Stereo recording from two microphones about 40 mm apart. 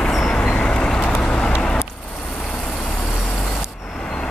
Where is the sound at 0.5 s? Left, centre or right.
Left.